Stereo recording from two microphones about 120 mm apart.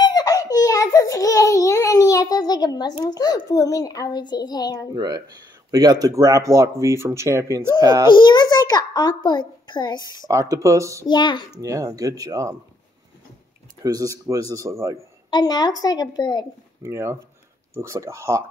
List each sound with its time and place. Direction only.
0.0 s a sound: 35° left (ahead or behind)
4.9 s a man's voice: 30° right (ahead or behind)
8.1 s a child's voice: 40° left (ahead or behind)
10.2 s a man's voice: 25° right (ahead or behind)
11.1 s a child's voice: 40° left (ahead or behind)
11.6 s a man's voice: 30° right (ahead or behind)
13.8 s a man's voice: 30° right (ahead or behind)
15.2 s a child's voice: 35° left (ahead or behind)
16.8 s a man's voice: 25° right (ahead or behind)